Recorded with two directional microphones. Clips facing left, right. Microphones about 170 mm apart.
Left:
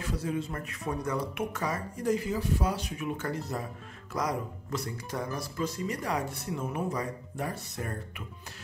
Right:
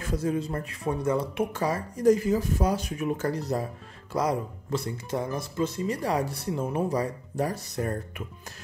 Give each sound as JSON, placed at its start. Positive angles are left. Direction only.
{"t": 0.0, "sound": "speech", "side_deg": -45}
{"t": 2.1, "sound": "speech", "side_deg": -45}